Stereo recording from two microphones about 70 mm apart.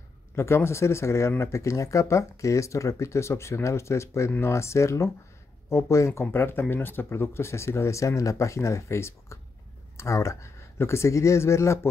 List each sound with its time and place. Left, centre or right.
0.4 s speech: left
6.2 s speech: left